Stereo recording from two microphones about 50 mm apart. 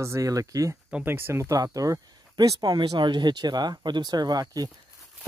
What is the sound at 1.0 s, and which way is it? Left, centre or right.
Speech, right.